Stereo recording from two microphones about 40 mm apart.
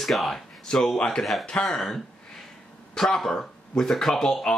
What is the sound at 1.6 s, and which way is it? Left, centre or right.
Speech, centre.